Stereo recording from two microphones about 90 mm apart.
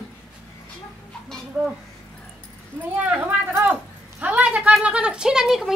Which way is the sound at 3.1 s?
20° right (ahead or behind).